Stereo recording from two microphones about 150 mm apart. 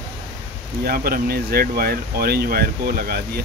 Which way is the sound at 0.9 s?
85° right.